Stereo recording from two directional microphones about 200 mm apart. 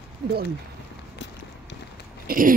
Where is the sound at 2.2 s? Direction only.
45° right (ahead or behind).